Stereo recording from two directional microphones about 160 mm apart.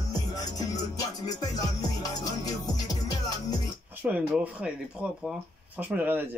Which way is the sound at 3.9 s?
10° right (ahead or behind).